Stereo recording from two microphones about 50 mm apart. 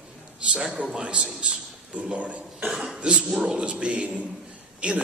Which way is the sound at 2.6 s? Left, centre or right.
Centre.